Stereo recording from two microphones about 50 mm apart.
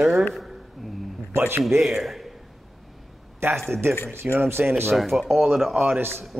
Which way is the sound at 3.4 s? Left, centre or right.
Right.